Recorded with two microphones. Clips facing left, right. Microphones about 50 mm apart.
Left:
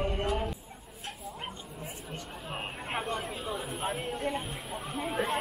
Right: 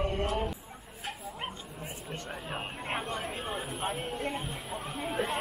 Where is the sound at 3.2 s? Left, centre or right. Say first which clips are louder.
Even; right.